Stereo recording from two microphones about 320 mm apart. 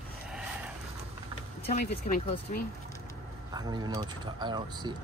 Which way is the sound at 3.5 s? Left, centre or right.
Centre.